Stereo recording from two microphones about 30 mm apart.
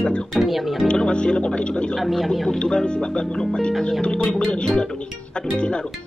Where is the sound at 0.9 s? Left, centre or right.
Left.